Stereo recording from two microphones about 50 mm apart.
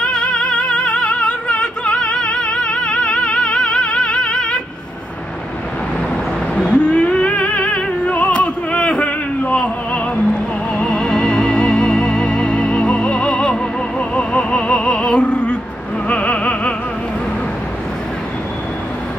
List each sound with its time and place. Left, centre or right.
0.0 s music: centre
6.5 s music: left
16.1 s opera: left